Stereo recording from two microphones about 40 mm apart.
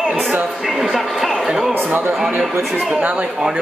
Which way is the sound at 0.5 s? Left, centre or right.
Centre.